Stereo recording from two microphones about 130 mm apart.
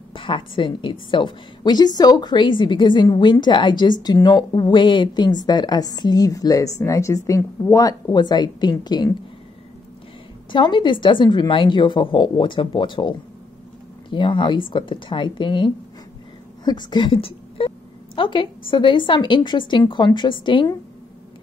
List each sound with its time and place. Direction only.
0.1 s a woman's voice: 40° left (ahead or behind)
10.5 s a woman's voice: 35° left (ahead or behind)
14.1 s a woman's voice: 40° left (ahead or behind)